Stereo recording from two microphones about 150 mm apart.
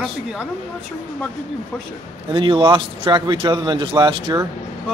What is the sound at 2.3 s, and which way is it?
Speech, 35° right (ahead or behind).